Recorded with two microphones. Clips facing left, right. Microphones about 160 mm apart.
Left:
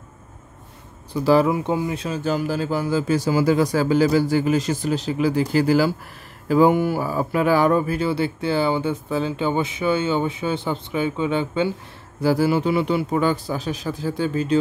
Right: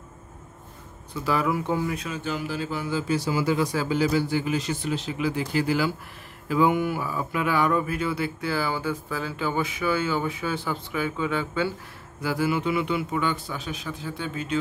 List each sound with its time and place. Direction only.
1.1 s speech: 30° left (ahead or behind)
1.5 s speech: 20° left (ahead or behind)
12.2 s speech: 35° left (ahead or behind)